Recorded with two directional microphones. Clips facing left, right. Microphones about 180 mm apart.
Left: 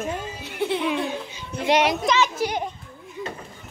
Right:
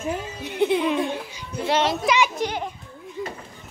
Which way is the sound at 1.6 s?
15° left (ahead or behind).